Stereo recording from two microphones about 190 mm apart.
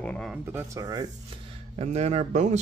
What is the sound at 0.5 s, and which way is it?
Speech, 15° right (ahead or behind).